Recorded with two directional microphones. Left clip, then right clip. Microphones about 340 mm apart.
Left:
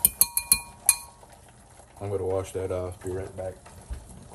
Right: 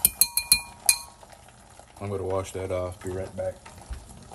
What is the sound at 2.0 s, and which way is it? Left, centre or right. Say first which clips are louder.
Speech: left 1 dB; right.